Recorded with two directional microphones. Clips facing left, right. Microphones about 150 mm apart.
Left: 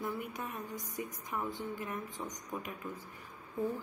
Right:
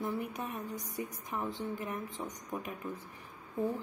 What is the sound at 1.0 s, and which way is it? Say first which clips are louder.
Speech: even; 30° right (ahead or behind).